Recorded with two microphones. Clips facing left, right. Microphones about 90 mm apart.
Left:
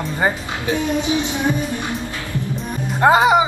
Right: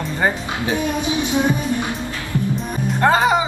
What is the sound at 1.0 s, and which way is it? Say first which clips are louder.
Music: right 1 dB; 20° right (ahead or behind).